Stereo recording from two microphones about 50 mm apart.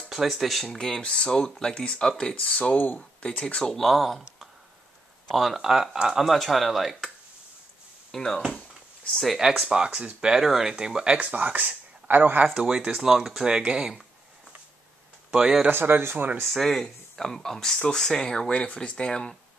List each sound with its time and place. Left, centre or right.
0.1 s speech: centre
0.7 s speech: centre
2.3 s speech: left
3.2 s speech: centre
3.7 s speech: centre
5.3 s speech: centre
8.1 s speech: centre
8.5 s a sound: left
9.7 s speech: centre
11.1 s speech: right
12.5 s speech: centre
15.3 s speech: centre
15.7 s speech: right
16.4 s speech: centre